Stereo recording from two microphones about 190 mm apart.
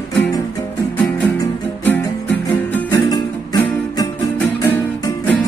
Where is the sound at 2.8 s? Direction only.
20° left (ahead or behind).